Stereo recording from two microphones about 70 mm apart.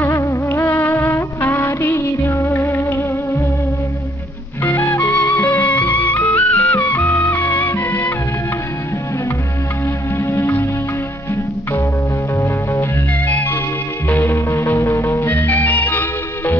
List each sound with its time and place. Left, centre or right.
0.1 s music: left
0.6 s music of bollywood: left
4.6 s music: left
10.1 s music: left
13.3 s music: left